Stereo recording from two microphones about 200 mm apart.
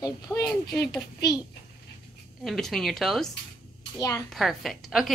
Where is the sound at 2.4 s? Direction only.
Centre (ahead or behind).